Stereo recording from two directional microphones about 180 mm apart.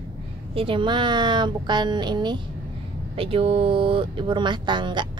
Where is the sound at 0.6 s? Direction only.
30° right (ahead or behind).